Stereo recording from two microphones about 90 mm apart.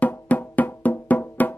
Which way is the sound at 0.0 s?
15° left (ahead or behind).